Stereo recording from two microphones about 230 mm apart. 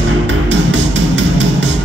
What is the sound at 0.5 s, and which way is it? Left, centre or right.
Music, right.